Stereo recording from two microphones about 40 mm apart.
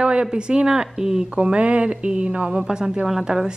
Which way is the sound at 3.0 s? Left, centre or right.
Centre.